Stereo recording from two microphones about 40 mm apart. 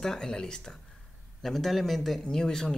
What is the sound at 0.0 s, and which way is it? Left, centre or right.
Speech, centre.